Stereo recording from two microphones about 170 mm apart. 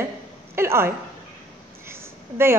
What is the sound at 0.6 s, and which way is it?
A woman's voice, 15° right (ahead or behind).